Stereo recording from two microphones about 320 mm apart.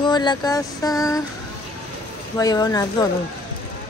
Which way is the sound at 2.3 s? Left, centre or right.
Centre.